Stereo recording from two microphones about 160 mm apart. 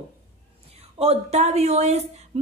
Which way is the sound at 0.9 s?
40° right (ahead or behind).